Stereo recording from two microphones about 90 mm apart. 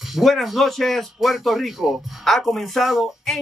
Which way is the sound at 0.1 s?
Centre (ahead or behind).